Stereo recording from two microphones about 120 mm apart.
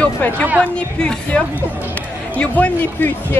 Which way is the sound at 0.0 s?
10° left (ahead or behind).